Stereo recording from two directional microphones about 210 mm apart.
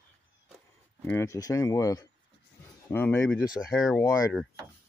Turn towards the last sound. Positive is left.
turn(degrees=15)  # may be behind; listen again after turning